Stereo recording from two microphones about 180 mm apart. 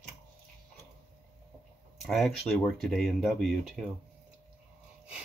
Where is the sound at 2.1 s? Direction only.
Centre (ahead or behind).